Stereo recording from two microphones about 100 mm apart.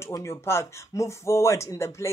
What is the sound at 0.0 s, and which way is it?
Speech, 30° left (ahead or behind).